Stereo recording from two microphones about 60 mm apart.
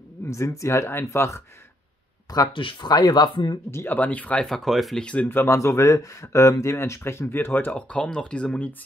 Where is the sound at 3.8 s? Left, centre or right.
Left.